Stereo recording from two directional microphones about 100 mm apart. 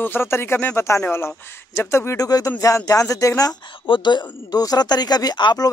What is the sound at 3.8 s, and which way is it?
Speech, 50° left (ahead or behind).